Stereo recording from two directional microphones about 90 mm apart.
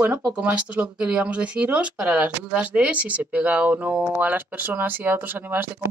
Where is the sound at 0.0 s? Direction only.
15° right (ahead or behind).